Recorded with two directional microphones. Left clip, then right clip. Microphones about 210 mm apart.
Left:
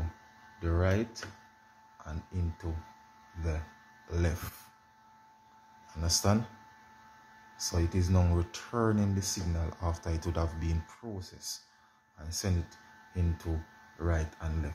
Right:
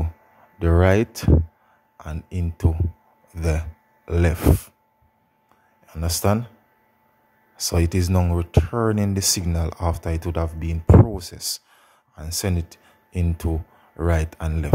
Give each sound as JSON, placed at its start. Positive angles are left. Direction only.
{"t": 0.6, "sound": "speech", "side_deg": -55}
{"t": 2.0, "sound": "speech", "side_deg": -45}
{"t": 4.1, "sound": "speech", "side_deg": -40}
{"t": 5.9, "sound": "speech", "side_deg": -40}
{"t": 7.5, "sound": "speech", "side_deg": -45}